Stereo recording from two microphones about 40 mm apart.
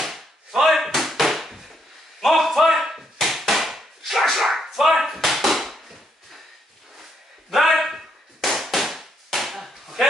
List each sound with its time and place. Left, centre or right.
0.6 s slam: centre
2.2 s a sound: centre
7.5 s chop: centre